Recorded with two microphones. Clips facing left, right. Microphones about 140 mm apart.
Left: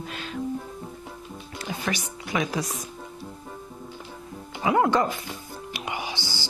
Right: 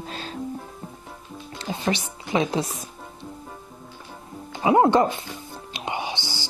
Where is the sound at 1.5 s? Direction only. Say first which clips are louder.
Right 4 dB; 25° right (ahead or behind).